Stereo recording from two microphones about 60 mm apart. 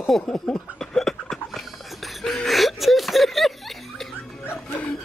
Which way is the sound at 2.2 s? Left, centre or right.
Centre.